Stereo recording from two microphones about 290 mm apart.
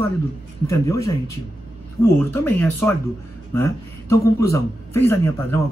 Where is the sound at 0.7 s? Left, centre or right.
Centre.